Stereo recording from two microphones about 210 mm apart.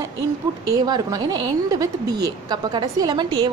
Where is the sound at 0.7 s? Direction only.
20° right (ahead or behind).